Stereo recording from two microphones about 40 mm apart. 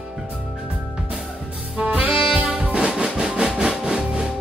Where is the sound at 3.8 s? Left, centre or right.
Centre.